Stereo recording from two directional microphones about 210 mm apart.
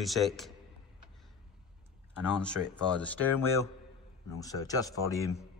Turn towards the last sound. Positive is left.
turn(degrees=15)  # may be behind; listen again after turning